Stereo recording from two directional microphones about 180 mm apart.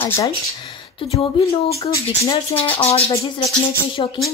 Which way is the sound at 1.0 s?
35° left (ahead or behind).